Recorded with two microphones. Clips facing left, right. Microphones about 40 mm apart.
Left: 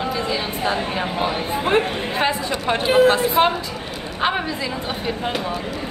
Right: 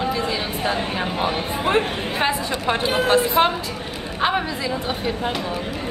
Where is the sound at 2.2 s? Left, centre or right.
Centre.